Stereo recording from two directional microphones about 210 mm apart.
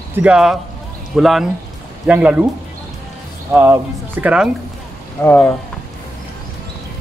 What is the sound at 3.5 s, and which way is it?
Speech, 10° right (ahead or behind).